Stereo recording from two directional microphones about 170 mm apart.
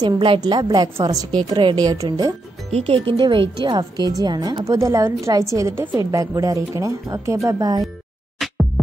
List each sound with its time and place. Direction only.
0.0 s a woman's voice: 25° right (ahead or behind)
2.7 s a woman's voice: 35° right (ahead or behind)